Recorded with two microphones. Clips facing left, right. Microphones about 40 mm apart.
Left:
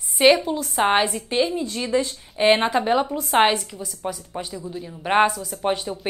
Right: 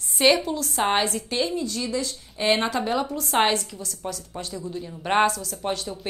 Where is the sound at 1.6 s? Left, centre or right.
Left.